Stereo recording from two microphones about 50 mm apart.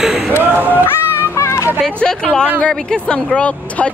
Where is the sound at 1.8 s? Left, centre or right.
Centre.